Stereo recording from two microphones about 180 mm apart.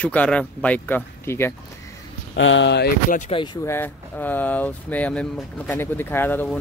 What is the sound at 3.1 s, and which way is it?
Speech, 45° left (ahead or behind).